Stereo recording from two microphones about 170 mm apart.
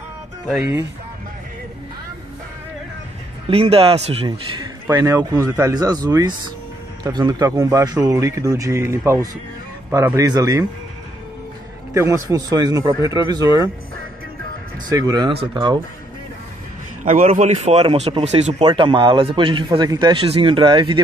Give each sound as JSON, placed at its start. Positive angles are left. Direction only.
{"t": 3.4, "sound": "speech", "side_deg": -35}
{"t": 4.8, "sound": "a man's voice", "side_deg": -15}
{"t": 11.9, "sound": "a man's voice", "side_deg": -20}
{"t": 14.9, "sound": "a man's voice", "side_deg": -25}
{"t": 17.0, "sound": "a man's voice", "side_deg": -50}